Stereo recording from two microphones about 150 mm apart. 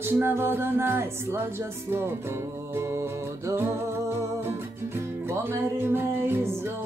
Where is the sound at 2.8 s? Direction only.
20° right (ahead or behind).